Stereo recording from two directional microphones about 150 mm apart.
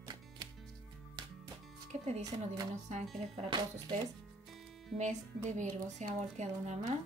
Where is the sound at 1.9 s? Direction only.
45° right (ahead or behind).